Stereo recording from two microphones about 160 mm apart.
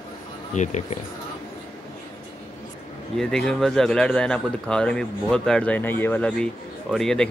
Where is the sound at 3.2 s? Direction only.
5° left (ahead or behind).